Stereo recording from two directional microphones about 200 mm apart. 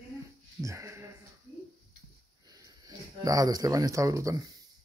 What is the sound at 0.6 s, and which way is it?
Speech, 15° right (ahead or behind).